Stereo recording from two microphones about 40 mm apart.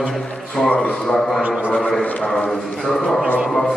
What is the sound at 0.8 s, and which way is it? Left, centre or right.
A man's voice, centre.